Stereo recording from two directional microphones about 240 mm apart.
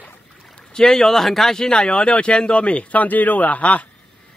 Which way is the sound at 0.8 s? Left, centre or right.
Centre.